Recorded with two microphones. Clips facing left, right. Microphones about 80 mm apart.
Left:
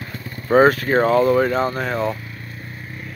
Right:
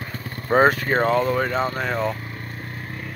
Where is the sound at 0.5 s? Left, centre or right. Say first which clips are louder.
Left 3 dB; centre.